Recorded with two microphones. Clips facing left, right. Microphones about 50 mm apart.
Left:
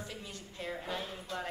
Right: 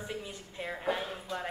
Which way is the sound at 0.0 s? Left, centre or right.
Right.